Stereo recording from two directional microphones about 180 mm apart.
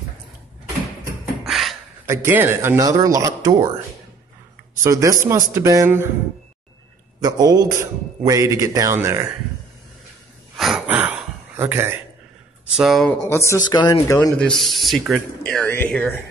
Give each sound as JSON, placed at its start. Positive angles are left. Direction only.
{"t": 1.4, "sound": "beatboxing", "side_deg": 0}
{"t": 2.0, "sound": "a man's voice", "side_deg": -10}
{"t": 4.8, "sound": "a man's voice", "side_deg": -15}
{"t": 7.2, "sound": "a man's voice", "side_deg": -20}
{"t": 10.6, "sound": "gasp", "side_deg": -5}
{"t": 12.7, "sound": "speech", "side_deg": 0}
{"t": 13.2, "sound": "speech", "side_deg": 15}